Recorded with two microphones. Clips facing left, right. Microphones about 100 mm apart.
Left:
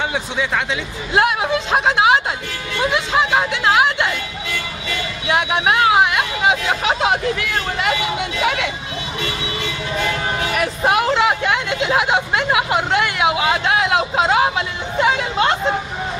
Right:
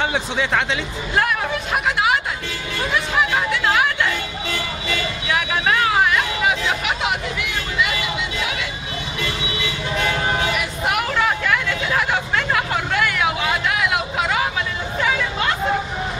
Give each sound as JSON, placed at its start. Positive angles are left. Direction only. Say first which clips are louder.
{"t": 1.1, "sound": "speech", "louder": "left 4 dB", "side_deg": 20}
{"t": 5.3, "sound": "speech", "louder": "left 4 dB", "side_deg": 25}
{"t": 7.3, "sound": "speech", "louder": "left 1 dB", "side_deg": 55}
{"t": 10.8, "sound": "speech", "louder": "left 5 dB", "side_deg": 30}